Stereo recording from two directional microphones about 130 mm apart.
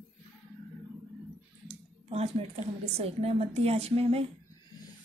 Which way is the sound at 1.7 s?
55° right (ahead or behind).